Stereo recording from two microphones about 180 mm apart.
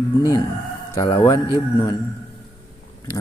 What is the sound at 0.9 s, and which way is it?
Speech, 20° left (ahead or behind).